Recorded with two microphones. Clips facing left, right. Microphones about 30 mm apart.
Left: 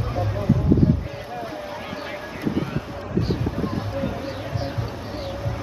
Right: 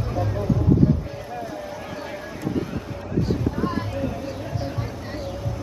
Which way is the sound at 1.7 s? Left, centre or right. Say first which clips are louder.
Left 1 dB; left.